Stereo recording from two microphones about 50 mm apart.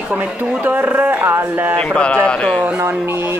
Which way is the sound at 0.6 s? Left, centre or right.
Right.